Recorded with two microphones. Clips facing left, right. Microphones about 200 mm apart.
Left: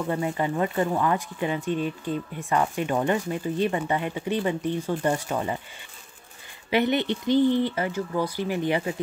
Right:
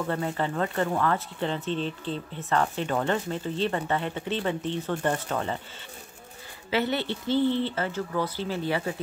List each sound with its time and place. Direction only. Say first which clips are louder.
0.0 s speech: left 2 dB; 10° left (ahead or behind)
6.7 s speech: left 4 dB; 20° left (ahead or behind)